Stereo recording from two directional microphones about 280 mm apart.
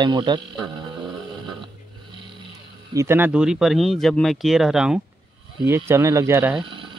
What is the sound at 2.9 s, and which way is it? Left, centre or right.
Speech, centre.